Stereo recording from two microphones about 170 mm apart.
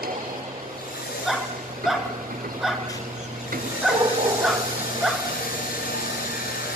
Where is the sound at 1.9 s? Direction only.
Centre (ahead or behind).